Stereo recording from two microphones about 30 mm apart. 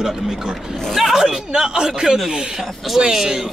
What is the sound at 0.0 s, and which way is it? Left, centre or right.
Speech, centre.